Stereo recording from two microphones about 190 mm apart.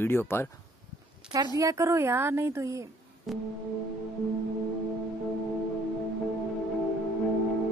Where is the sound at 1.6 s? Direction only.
15° right (ahead or behind).